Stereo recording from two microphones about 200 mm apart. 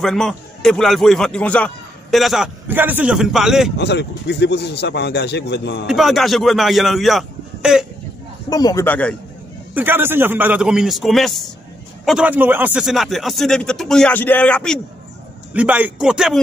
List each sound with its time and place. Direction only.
0.0 s a man's voice: centre (ahead or behind)
3.7 s speech: 60° left (ahead or behind)
5.9 s a man's voice: centre (ahead or behind)
8.5 s speech: 20° left (ahead or behind)
9.8 s a man's voice: 10° right (ahead or behind); by 14.8 s 5° left (ahead or behind)
15.5 s a man's voice: 5° right (ahead or behind)